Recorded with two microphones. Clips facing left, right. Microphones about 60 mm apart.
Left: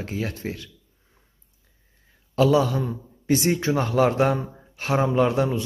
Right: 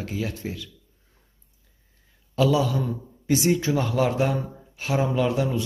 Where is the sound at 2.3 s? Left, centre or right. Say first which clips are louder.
Left 2 dB; left.